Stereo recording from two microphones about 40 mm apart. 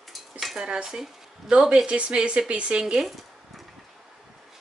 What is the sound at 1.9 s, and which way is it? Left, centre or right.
Speech, right.